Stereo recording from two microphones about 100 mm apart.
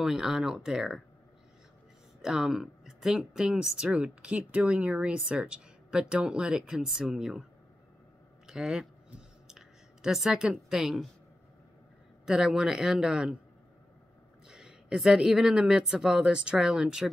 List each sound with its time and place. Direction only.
0.0 s speech: 5° right (ahead or behind)
2.2 s speech: 5° right (ahead or behind)
8.5 s speech: 5° right (ahead or behind)
9.5 s a sound: 5° right (ahead or behind)
12.3 s speech: 5° right (ahead or behind)
14.5 s speech: 10° right (ahead or behind)